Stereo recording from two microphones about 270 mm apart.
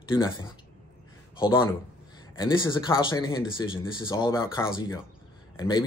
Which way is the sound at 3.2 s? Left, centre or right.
Centre.